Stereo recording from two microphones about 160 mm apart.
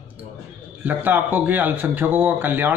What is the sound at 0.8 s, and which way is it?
A man's voice, 10° right (ahead or behind).